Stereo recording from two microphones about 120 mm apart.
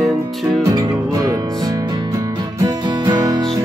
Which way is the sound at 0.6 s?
30° right (ahead or behind).